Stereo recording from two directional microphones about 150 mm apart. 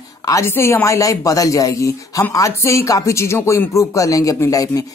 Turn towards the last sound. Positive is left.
turn(degrees=25)  # may be behind; listen again after turning